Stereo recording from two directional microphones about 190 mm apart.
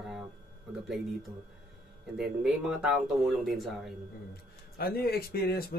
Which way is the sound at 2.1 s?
5° right (ahead or behind).